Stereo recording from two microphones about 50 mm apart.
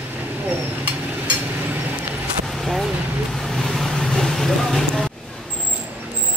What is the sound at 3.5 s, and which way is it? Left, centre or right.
Vehicle, centre.